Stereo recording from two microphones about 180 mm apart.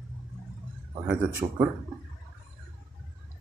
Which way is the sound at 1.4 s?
35° right (ahead or behind).